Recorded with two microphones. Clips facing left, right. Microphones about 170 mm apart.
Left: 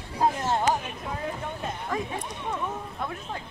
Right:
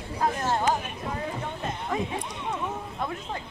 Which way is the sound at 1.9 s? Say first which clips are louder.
Right 2 dB; 20° right (ahead or behind).